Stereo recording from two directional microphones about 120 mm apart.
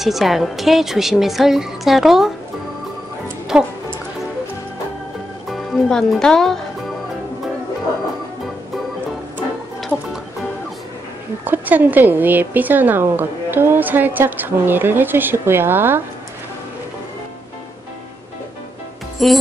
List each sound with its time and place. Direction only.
0.0 s a woman's voice: centre (ahead or behind)
3.5 s speech: 5° right (ahead or behind)
5.5 s speech: centre (ahead or behind)
11.4 s a woman's voice: 15° right (ahead or behind)
19.2 s a woman's voice: centre (ahead or behind)